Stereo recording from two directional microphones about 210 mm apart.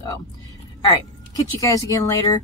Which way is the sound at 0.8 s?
15° left (ahead or behind).